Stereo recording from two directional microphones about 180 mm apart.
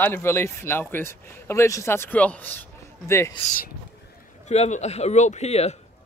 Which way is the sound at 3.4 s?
30° left (ahead or behind).